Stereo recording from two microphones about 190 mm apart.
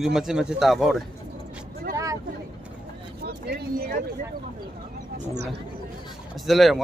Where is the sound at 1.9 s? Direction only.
15° right (ahead or behind).